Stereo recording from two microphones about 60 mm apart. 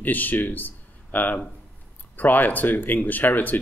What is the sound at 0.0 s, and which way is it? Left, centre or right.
Speech, left.